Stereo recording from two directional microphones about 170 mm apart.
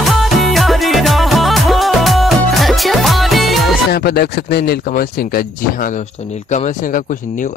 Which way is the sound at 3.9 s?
70° left (ahead or behind).